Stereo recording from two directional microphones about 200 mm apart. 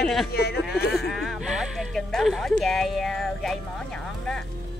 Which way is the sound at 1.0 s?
Centre (ahead or behind).